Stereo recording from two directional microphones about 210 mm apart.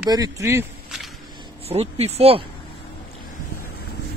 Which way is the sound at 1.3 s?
25° right (ahead or behind).